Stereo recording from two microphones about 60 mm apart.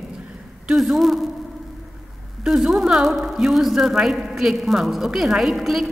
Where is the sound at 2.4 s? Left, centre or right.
Centre.